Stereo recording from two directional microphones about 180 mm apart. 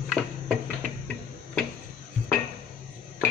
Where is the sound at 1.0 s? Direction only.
5° left (ahead or behind).